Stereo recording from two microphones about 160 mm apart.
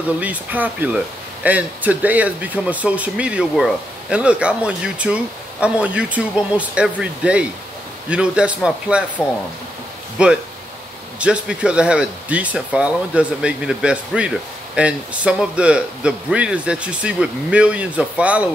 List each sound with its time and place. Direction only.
0.2 s speech: 10° right (ahead or behind)
10.1 s speech: 5° right (ahead or behind)